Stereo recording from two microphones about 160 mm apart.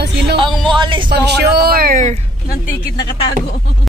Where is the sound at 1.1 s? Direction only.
90° right; by 2.1 s 60° right (ahead or behind).